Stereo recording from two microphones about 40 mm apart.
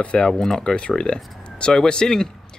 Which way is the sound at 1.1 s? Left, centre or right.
Left.